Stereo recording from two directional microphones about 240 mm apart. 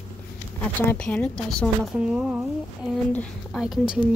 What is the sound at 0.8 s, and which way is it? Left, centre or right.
A woman's voice, centre.